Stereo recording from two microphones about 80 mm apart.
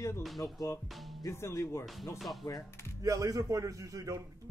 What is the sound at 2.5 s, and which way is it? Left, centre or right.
Speech, left.